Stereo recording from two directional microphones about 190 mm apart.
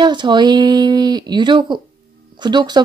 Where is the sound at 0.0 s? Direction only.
25° right (ahead or behind).